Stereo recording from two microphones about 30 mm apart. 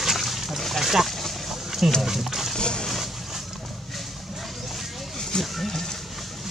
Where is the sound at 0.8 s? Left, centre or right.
Centre.